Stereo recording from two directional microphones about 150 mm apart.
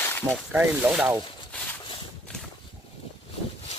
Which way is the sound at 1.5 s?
10° left (ahead or behind).